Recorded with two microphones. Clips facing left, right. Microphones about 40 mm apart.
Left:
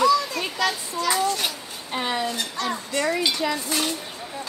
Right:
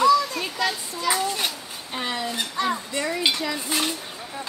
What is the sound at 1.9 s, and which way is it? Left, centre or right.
Speech, centre.